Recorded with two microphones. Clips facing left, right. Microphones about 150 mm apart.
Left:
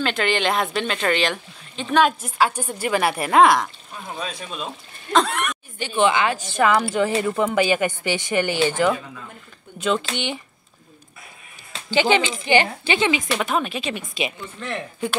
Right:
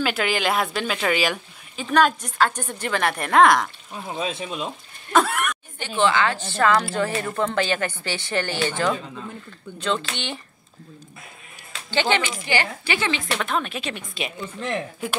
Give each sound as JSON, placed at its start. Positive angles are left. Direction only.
{"t": 0.0, "sound": "speech", "side_deg": -5}
{"t": 4.1, "sound": "speech", "side_deg": -25}
{"t": 5.1, "sound": "a sound", "side_deg": -5}
{"t": 5.8, "sound": "a woman's voice", "side_deg": 20}
{"t": 11.9, "sound": "a woman's voice", "side_deg": 15}
{"t": 13.3, "sound": "speech", "side_deg": 10}
{"t": 14.6, "sound": "speech", "side_deg": -10}